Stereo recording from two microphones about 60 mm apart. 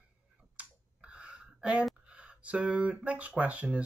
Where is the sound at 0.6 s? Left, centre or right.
Centre.